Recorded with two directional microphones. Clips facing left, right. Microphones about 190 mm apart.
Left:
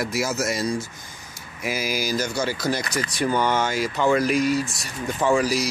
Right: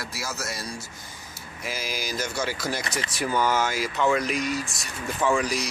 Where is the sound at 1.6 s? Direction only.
10° left (ahead or behind).